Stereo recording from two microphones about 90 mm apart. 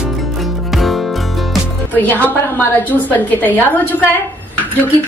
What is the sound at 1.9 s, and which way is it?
A woman's voice, 20° left (ahead or behind).